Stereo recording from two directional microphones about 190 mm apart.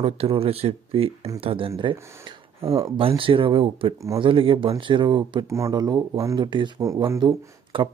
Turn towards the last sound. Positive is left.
turn(degrees=-25)  # may be behind; listen again after turning